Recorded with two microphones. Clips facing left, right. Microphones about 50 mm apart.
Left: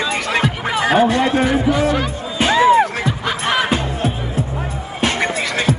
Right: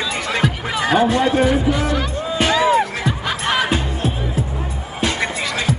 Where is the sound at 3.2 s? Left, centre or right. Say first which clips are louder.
Left 2 dB; centre.